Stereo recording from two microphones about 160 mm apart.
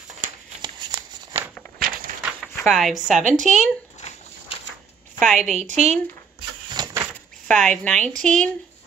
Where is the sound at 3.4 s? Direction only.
50° right (ahead or behind).